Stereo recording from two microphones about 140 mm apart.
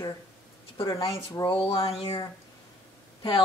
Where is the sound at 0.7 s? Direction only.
40° left (ahead or behind).